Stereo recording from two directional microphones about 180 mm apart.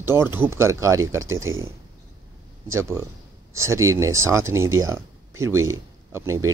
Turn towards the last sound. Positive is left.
turn(degrees=-15)  # may be behind; listen again after turning